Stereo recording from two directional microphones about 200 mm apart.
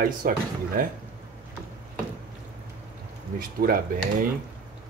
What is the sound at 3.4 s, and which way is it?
Speech, 45° right (ahead or behind).